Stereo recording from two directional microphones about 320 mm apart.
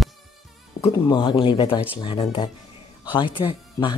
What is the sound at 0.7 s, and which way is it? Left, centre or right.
Speech, centre.